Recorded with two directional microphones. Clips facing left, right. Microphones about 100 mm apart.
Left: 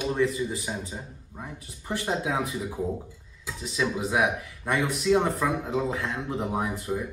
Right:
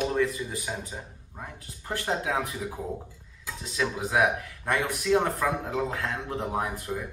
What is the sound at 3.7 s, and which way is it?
A man's voice, 15° left (ahead or behind).